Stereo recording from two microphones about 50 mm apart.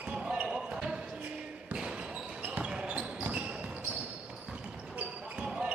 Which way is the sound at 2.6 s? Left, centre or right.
Right.